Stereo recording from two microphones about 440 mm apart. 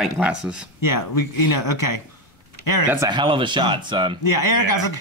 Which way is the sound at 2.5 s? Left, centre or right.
Left.